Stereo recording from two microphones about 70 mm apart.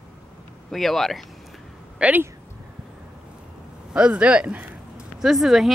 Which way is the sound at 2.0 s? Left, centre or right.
Right.